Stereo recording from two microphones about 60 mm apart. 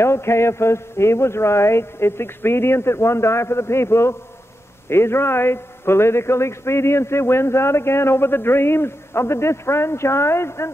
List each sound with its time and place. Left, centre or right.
0.0 s a man's voice: left